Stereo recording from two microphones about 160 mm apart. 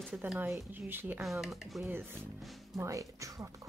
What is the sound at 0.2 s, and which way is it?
Speech, 5° right (ahead or behind).